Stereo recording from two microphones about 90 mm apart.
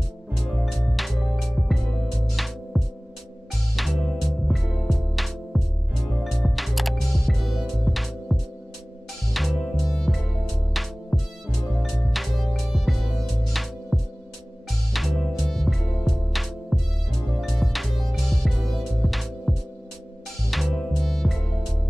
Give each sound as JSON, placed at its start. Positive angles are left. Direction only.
{"t": 0.5, "sound": "music", "side_deg": 0}